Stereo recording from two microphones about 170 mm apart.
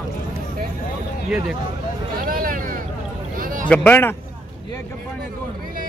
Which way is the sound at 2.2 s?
55° right (ahead or behind).